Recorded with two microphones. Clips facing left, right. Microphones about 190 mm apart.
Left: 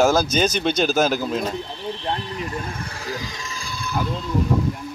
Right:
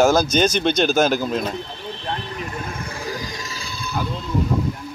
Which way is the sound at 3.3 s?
40° right (ahead or behind).